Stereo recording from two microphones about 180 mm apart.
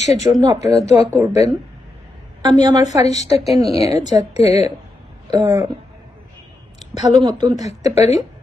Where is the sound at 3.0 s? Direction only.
35° left (ahead or behind).